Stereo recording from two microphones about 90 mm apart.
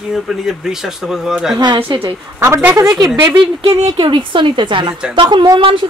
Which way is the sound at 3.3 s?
75° right (ahead or behind).